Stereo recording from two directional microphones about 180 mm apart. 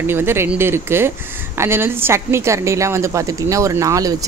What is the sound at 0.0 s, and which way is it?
A woman's voice, 10° right (ahead or behind).